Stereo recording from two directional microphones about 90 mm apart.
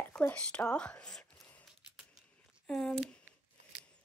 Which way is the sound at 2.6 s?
5° left (ahead or behind).